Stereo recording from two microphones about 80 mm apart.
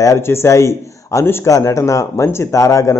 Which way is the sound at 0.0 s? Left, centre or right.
Left.